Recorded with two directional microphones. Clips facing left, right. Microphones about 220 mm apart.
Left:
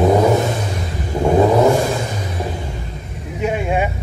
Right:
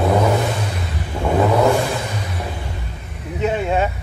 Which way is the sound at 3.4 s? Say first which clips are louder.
Even; 15° left (ahead or behind).